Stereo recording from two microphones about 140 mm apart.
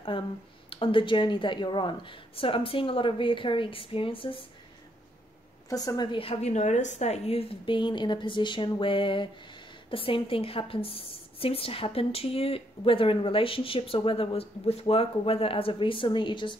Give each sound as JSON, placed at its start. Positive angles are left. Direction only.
{"t": 0.1, "sound": "a woman's voice", "side_deg": 40}
{"t": 5.7, "sound": "a woman's voice", "side_deg": 25}
{"t": 6.1, "sound": "a woman's voice", "side_deg": 45}